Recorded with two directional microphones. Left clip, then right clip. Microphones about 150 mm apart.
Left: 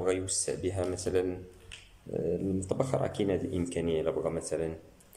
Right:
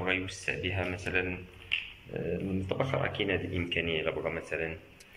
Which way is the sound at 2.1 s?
15° left (ahead or behind).